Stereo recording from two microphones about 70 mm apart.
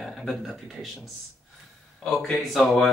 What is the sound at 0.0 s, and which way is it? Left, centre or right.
A man's voice, centre.